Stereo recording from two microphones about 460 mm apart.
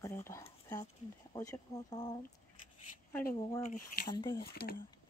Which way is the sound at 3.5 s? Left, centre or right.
Centre.